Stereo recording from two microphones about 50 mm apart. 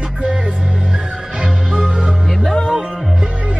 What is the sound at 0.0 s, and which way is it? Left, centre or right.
Music, right.